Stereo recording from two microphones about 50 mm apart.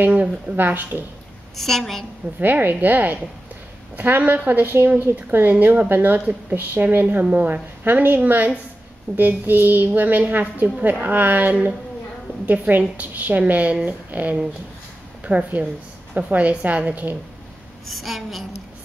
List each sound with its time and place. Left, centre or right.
0.0 s a woman's voice: right
1.6 s a woman's voice: centre
2.4 s a woman's voice: right
17.8 s a woman's voice: centre